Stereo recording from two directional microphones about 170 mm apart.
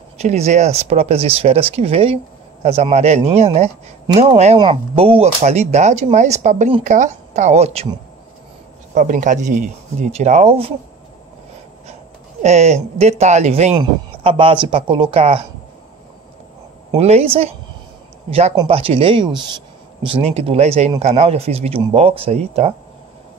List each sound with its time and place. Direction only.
0.2 s a woman's voice: 40° right (ahead or behind)
8.9 s a woman's voice: 50° right (ahead or behind); by 10.7 s 35° right (ahead or behind)
12.4 s speech: 40° right (ahead or behind)
16.9 s speech: 35° right (ahead or behind)